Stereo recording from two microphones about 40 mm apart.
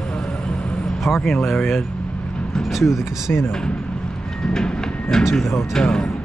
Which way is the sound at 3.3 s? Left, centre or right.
Left.